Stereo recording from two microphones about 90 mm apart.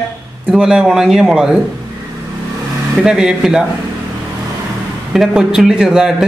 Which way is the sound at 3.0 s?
5° right (ahead or behind).